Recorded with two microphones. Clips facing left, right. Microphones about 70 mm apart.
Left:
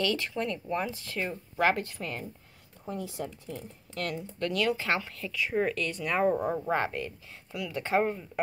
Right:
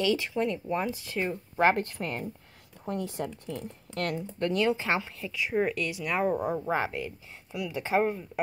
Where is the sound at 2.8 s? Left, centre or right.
Right.